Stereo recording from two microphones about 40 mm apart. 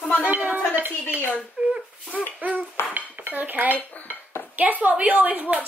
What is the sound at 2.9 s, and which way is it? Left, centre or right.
Dishes, right.